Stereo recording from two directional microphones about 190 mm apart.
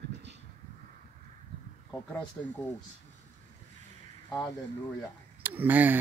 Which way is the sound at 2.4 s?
5° left (ahead or behind).